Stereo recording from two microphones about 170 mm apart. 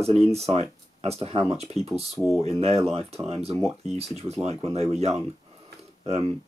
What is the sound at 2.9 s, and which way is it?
Speech, 35° right (ahead or behind).